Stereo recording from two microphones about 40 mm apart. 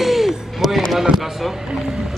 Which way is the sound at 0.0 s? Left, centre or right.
Centre.